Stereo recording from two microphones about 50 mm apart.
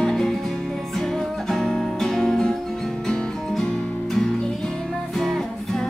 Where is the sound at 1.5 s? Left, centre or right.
Centre.